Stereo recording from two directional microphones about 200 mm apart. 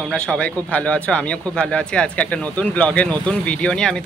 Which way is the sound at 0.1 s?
5° left (ahead or behind).